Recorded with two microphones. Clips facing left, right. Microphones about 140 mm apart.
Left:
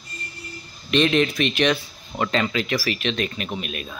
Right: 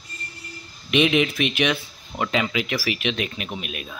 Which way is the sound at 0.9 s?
10° right (ahead or behind).